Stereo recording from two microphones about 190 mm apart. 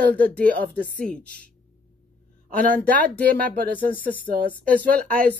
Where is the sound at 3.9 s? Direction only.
50° left (ahead or behind).